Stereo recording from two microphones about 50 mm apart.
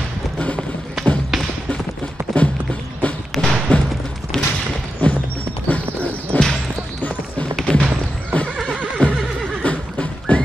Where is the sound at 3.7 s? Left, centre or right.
Left.